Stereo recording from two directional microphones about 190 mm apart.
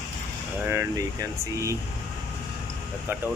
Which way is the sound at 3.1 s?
10° right (ahead or behind).